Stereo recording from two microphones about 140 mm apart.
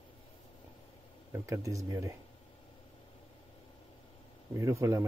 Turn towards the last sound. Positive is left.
turn(degrees=-20)  # may be behind; listen again after turning